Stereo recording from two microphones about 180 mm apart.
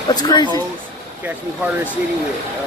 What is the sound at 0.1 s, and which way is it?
Speech, 25° left (ahead or behind).